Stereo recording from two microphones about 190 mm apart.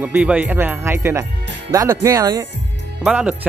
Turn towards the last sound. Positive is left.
turn(degrees=-5)  # may be behind; listen again after turning